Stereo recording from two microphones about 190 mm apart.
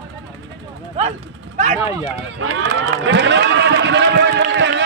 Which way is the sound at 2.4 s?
90° right.